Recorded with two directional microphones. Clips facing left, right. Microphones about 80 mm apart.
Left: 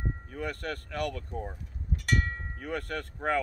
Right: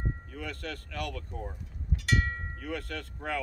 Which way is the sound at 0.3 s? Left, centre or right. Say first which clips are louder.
Left 4 dB; left.